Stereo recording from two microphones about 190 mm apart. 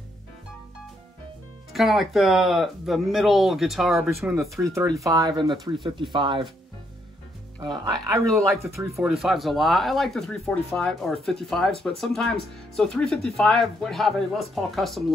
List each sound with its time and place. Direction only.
1.7 s speech: centre (ahead or behind)
4.2 s speech: 15° right (ahead or behind)
7.6 s speech: 20° right (ahead or behind)
8.9 s speech: centre (ahead or behind)